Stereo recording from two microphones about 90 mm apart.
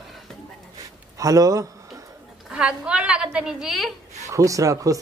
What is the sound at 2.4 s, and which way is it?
A woman's voice, 10° right (ahead or behind).